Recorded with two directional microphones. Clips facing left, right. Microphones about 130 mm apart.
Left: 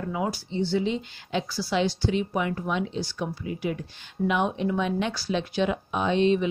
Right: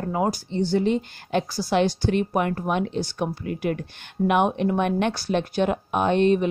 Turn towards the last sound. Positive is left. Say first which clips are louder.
# right 3 dB
turn(degrees=-50)  # may be behind; listen again after turning